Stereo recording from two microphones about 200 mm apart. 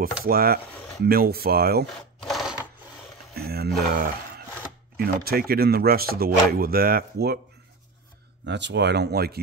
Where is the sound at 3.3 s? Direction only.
50° right (ahead or behind).